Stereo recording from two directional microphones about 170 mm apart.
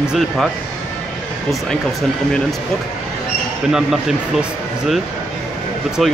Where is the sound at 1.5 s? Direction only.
Centre (ahead or behind).